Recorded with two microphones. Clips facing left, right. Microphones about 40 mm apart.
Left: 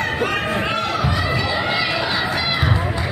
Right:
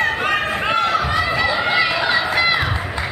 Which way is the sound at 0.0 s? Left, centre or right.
Centre.